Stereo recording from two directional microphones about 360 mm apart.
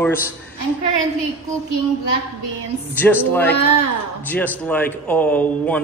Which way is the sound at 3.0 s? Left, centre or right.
Centre.